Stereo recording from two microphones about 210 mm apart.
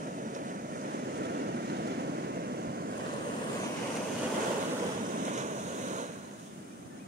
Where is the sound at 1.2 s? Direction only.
50° right (ahead or behind).